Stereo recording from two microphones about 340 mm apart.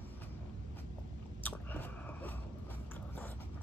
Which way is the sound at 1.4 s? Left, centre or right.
Centre.